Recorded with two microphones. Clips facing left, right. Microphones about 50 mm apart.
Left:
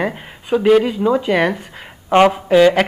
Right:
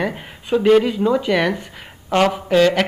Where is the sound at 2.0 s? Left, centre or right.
Left.